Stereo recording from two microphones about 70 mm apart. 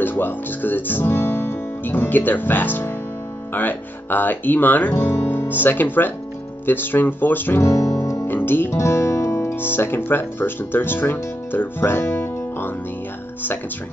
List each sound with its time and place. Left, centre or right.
0.0 s speech: left
7.6 s music: left
8.3 s speech: left